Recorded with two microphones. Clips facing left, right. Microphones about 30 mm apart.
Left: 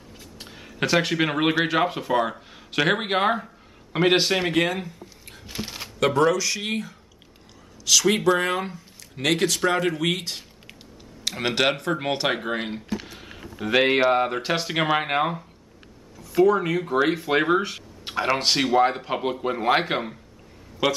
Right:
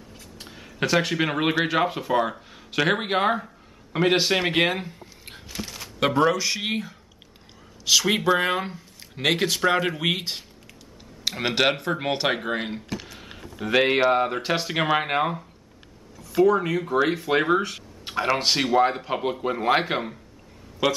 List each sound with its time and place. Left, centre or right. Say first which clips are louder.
0.4 s speech: even; centre
4.5 s a sound: right 1 dB; right
5.5 s shuffling cards: left 2 dB; centre
5.9 s speech: left 1 dB; centre
13.0 s a sound: left 1 dB; centre
13.4 s speech: left 1 dB; centre